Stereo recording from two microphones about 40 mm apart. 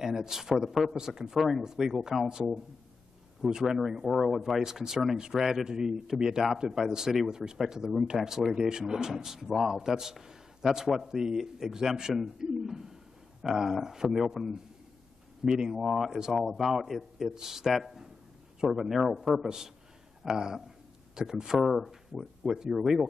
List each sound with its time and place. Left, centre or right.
0.0 s speech: centre
3.3 s a man's voice: centre
15.8 s a man's voice: centre
16.1 s speech: centre
16.3 s a man's voice: centre
19.4 s speech: centre
21.5 s a man's voice: centre